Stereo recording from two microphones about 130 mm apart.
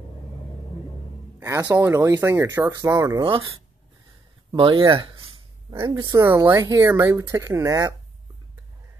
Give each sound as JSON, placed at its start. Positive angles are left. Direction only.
{"t": 1.4, "sound": "speech", "side_deg": -15}
{"t": 4.5, "sound": "speech", "side_deg": -40}
{"t": 5.9, "sound": "speech", "side_deg": -25}